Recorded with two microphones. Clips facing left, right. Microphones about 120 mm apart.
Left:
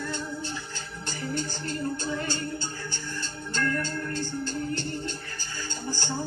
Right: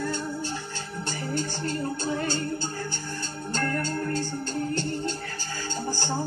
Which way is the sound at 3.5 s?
40° right (ahead or behind).